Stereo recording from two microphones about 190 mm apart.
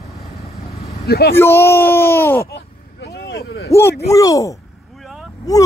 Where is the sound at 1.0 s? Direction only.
55° left (ahead or behind).